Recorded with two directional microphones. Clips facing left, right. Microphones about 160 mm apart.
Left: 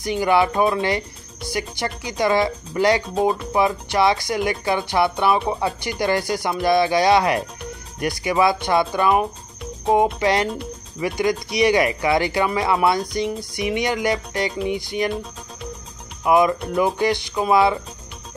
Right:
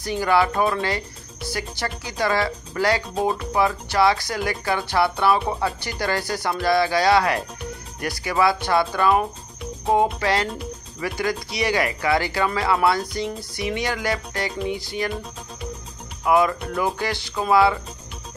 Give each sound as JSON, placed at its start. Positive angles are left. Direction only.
{"t": 0.0, "sound": "speech", "side_deg": 15}
{"t": 3.2, "sound": "speech", "side_deg": 0}
{"t": 3.5, "sound": "speech", "side_deg": 20}
{"t": 10.2, "sound": "speech", "side_deg": 20}
{"t": 16.3, "sound": "speech", "side_deg": 20}